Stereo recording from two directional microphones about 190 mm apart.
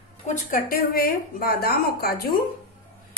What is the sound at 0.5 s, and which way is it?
A woman's voice, 50° left (ahead or behind).